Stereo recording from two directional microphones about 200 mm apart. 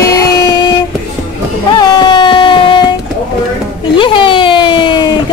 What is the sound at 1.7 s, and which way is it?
Music, 20° left (ahead or behind).